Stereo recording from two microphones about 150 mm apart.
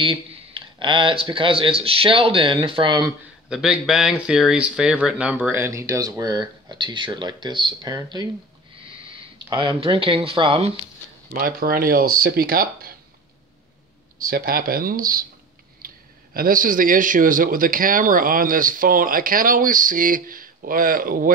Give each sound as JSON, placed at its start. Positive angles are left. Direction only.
{"t": 0.0, "sound": "speech", "side_deg": -35}
{"t": 3.4, "sound": "speech", "side_deg": -5}
{"t": 11.3, "sound": "speech", "side_deg": -75}
{"t": 14.2, "sound": "speech", "side_deg": -75}
{"t": 15.8, "sound": "clicking", "side_deg": -75}
{"t": 16.3, "sound": "speech", "side_deg": -70}